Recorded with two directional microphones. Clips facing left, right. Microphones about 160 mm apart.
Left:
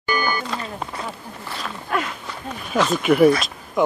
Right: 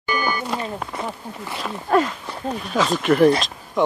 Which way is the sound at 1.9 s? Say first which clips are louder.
Right 7 dB; 35° right (ahead or behind).